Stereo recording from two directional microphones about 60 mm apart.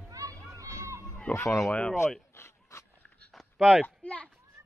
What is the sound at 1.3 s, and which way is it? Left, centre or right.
Speech, left.